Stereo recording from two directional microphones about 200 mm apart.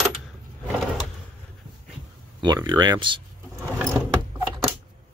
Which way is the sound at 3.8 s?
15° right (ahead or behind).